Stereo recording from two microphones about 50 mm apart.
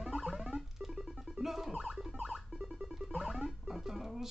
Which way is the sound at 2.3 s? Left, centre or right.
Centre.